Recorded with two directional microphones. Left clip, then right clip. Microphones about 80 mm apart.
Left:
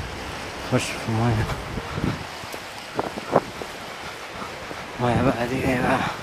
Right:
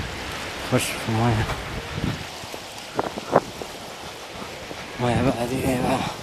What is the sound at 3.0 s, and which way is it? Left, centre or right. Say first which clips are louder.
Wind: right 1 dB; right.